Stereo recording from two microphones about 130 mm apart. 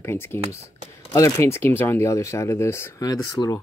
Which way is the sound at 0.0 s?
20° left (ahead or behind).